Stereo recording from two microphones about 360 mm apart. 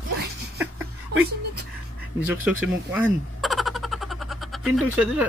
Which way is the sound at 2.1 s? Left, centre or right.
Centre.